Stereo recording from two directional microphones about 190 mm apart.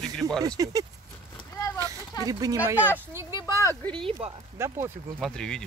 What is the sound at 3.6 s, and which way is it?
Speech, 15° left (ahead or behind).